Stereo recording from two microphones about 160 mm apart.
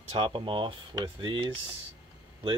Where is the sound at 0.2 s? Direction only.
35° right (ahead or behind).